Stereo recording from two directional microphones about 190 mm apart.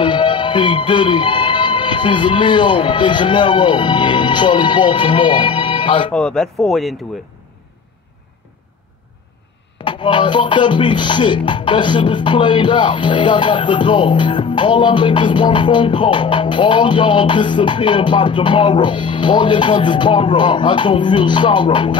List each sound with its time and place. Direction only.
0.0 s speech: 25° left (ahead or behind)
6.1 s speech: 5° left (ahead or behind)
9.8 s music: 25° left (ahead or behind)